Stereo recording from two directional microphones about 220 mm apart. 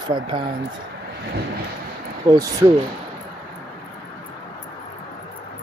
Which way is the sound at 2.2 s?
15° right (ahead or behind).